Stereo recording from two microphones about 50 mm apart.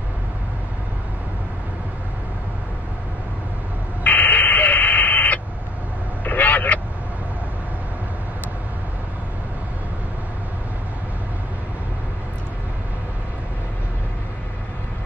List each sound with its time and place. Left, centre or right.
4.0 s radio: left
6.2 s vehicle: left